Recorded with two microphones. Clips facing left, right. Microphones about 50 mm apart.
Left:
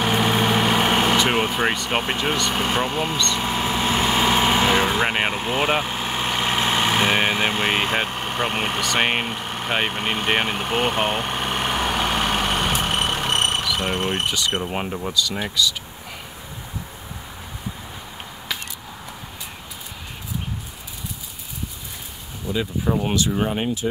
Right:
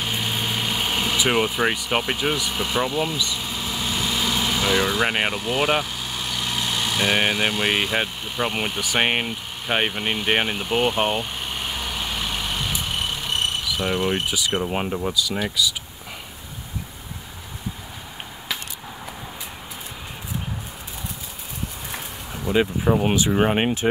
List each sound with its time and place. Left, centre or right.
0.0 s vehicle: left
1.9 s speech: left
3.3 s vehicle: left
5.0 s speech: centre
5.3 s speech: left
8.9 s speech: centre
9.2 s speech: left
10.4 s vehicle: left
13.7 s speech: left
14.3 s speech: centre
22.5 s speech: right
22.8 s speech: centre
23.3 s speech: right